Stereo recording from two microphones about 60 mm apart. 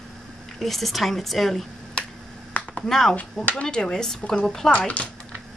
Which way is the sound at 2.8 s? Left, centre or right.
Centre.